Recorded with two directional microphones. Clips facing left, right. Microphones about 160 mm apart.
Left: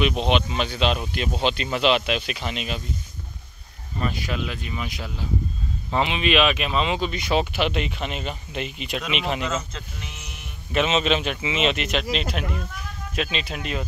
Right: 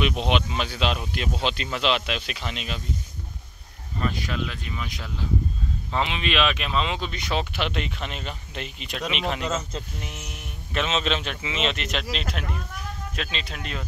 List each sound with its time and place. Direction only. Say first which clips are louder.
0.0 s speech: left 2 dB; 5° right (ahead or behind)
4.0 s speech: left 1 dB; 10° left (ahead or behind)
9.8 s speech: right 3 dB; 40° right (ahead or behind)
10.7 s speech: left 4 dB; 5° left (ahead or behind)